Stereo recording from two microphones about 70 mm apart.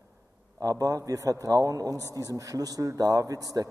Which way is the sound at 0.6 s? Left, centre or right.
Right.